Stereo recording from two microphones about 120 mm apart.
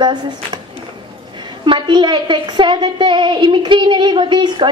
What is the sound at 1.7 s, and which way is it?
A woman's voice, 40° right (ahead or behind).